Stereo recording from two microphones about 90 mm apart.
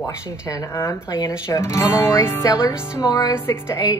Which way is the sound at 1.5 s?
30° left (ahead or behind).